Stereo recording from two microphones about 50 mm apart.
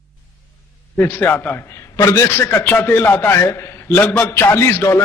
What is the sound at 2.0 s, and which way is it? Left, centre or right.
Speech, left.